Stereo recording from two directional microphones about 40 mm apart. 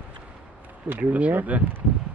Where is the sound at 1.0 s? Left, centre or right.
Right.